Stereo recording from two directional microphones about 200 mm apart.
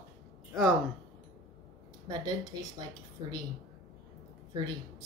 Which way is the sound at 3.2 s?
25° right (ahead or behind).